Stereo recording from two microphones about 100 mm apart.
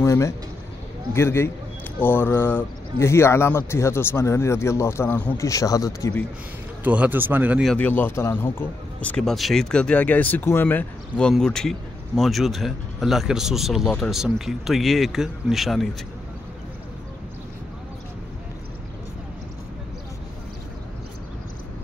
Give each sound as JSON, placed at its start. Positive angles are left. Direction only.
{"t": 0.0, "sound": "a sound", "side_deg": 30}
{"t": 1.1, "sound": "speech", "side_deg": 25}
{"t": 6.8, "sound": "speech", "side_deg": -15}
{"t": 7.7, "sound": "speech", "side_deg": 20}
{"t": 9.1, "sound": "speech", "side_deg": 0}